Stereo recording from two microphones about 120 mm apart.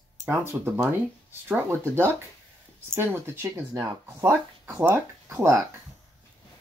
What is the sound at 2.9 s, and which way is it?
Speech, 20° right (ahead or behind).